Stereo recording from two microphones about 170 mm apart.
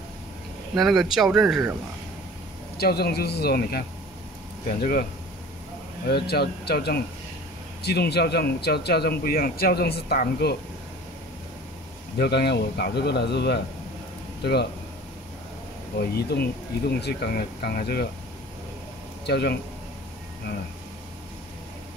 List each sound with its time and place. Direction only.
0.7 s speech: centre (ahead or behind)
2.8 s speech: 70° left (ahead or behind)
6.0 s speech: 70° left (ahead or behind)
12.2 s speech: 75° left (ahead or behind)
16.0 s speech: 70° left (ahead or behind)
19.2 s speech: 70° left (ahead or behind)